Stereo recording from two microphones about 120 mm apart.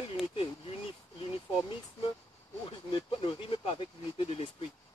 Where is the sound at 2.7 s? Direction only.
45° left (ahead or behind).